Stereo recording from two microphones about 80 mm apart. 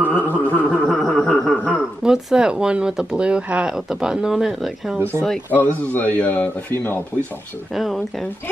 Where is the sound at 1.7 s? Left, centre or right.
Centre.